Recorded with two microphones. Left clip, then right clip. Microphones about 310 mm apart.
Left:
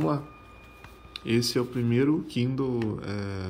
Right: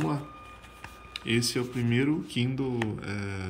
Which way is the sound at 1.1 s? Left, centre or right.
Centre.